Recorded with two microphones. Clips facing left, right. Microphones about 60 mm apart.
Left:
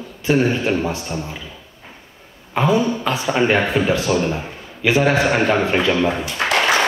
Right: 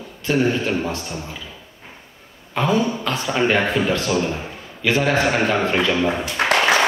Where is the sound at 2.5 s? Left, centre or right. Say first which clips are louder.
Left 2 dB; centre.